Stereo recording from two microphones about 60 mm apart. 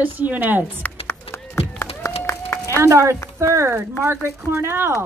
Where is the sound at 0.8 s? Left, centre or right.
Left.